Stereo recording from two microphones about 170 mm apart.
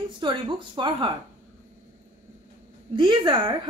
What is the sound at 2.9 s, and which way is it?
Speech, 25° right (ahead or behind).